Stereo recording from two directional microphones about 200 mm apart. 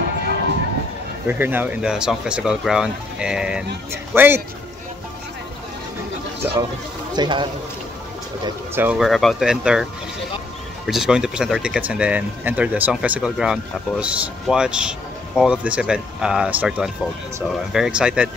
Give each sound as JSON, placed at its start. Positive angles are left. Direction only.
{"t": 1.2, "sound": "speech", "side_deg": -10}
{"t": 6.4, "sound": "speech", "side_deg": -10}
{"t": 7.2, "sound": "a man's voice", "side_deg": -20}
{"t": 8.5, "sound": "speech", "side_deg": -10}
{"t": 10.9, "sound": "speech", "side_deg": -5}